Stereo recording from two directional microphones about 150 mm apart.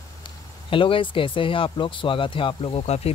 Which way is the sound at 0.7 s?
35° left (ahead or behind).